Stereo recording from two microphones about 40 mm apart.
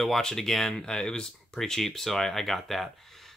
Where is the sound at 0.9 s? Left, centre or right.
Left; by 2.9 s centre.